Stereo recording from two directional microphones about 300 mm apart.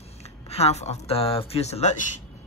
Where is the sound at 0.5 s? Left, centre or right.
Left.